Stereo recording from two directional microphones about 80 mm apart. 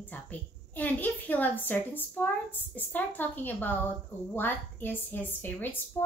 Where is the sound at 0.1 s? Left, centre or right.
Left.